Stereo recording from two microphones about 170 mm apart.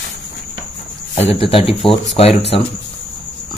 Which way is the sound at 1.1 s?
35° left (ahead or behind).